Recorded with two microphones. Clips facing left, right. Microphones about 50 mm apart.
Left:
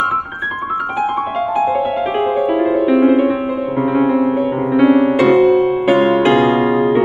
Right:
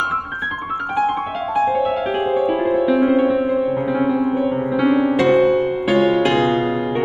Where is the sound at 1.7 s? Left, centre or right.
Centre.